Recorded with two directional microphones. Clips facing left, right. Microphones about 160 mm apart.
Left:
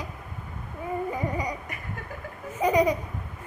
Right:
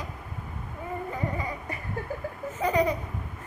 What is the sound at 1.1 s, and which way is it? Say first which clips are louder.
Music: left 2 dB; 15° left (ahead or behind).